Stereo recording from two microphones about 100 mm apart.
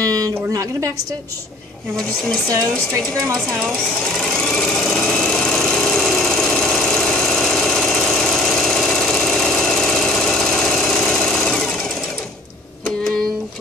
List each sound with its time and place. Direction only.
0.0 s a sound: 40° right (ahead or behind)
0.5 s a woman's voice: 35° right (ahead or behind)
4.1 s engine: 5° left (ahead or behind)